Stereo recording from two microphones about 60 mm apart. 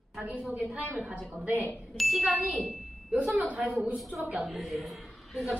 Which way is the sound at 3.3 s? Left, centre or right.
Right.